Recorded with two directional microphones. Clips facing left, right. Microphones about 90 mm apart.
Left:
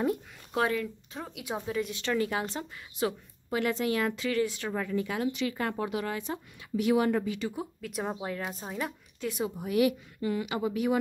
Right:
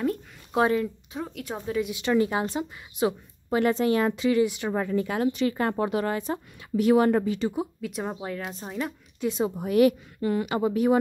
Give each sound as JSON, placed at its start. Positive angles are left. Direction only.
{"t": 0.5, "sound": "speech", "side_deg": -25}
{"t": 1.3, "sound": "speech", "side_deg": 10}
{"t": 1.7, "sound": "a woman's voice", "side_deg": -10}
{"t": 3.4, "sound": "speech", "side_deg": -35}
{"t": 4.1, "sound": "speech", "side_deg": -15}
{"t": 4.7, "sound": "speech", "side_deg": -40}
{"t": 7.8, "sound": "speech", "side_deg": 0}
{"t": 9.2, "sound": "speech", "side_deg": -25}
{"t": 9.6, "sound": "speech", "side_deg": -50}